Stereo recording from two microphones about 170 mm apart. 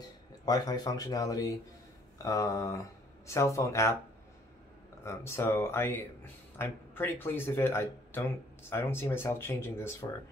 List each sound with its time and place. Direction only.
0.5 s speech: 25° left (ahead or behind)
5.0 s speech: 15° left (ahead or behind)